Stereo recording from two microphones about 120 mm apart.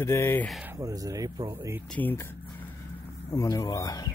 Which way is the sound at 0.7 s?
30° right (ahead or behind).